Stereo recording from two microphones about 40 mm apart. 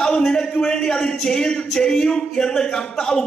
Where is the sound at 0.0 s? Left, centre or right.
Centre.